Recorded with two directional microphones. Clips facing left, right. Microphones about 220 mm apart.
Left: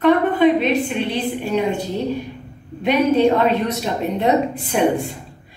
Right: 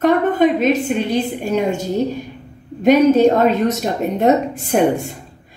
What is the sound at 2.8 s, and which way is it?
A woman's voice, 45° right (ahead or behind).